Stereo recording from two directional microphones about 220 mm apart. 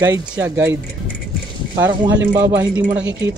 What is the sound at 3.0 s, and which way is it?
Speech, 55° right (ahead or behind).